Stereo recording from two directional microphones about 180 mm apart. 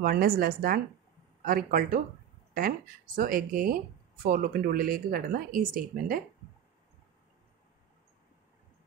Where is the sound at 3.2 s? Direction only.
50° right (ahead or behind).